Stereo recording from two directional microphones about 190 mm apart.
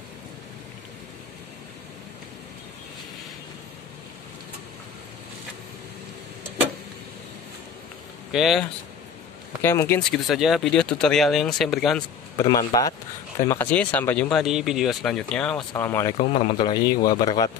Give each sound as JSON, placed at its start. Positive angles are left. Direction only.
{"t": 8.3, "sound": "speech", "side_deg": 0}
{"t": 9.6, "sound": "speech", "side_deg": 10}
{"t": 10.0, "sound": "speech", "side_deg": 0}
{"t": 12.4, "sound": "a man's voice", "side_deg": 20}
{"t": 16.2, "sound": "a man's voice", "side_deg": 35}